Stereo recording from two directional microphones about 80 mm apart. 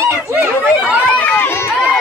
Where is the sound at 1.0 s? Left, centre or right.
Left.